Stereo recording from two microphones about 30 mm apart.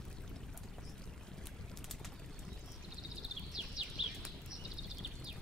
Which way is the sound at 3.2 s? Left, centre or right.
Right.